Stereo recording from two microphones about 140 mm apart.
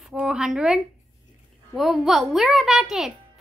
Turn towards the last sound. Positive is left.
turn(degrees=0)  # may be behind; listen again after turning